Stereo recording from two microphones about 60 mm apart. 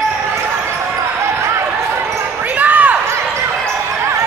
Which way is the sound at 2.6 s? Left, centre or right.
Right.